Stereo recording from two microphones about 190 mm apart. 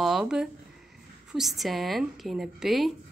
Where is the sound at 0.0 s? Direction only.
Centre (ahead or behind).